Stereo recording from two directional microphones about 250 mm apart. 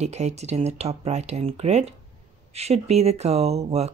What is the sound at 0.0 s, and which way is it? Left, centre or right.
Speech, right.